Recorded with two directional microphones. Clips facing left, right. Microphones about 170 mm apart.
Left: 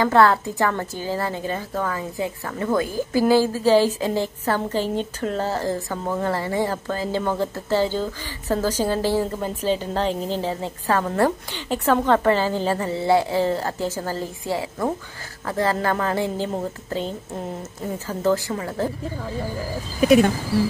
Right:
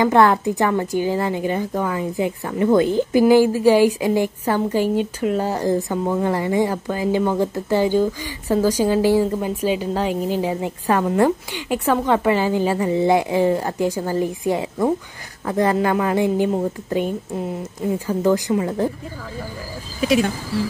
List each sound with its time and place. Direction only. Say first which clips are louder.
0.0 s speech: right 2 dB; 20° right (ahead or behind)
20.0 s speech: left 3 dB; 55° left (ahead or behind)